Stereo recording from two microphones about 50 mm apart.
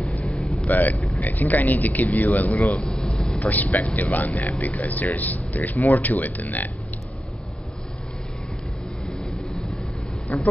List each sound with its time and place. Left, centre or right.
0.2 s vehicle: centre
0.7 s speech: left
2.8 s air conditioning: centre
3.3 s speech: left
10.2 s speech: left